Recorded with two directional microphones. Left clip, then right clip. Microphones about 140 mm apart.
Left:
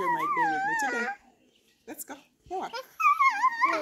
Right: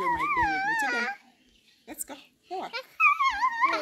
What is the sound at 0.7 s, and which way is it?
Speech, 55° left (ahead or behind).